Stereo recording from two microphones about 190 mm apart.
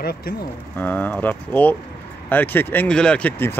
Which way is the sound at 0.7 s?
10° left (ahead or behind).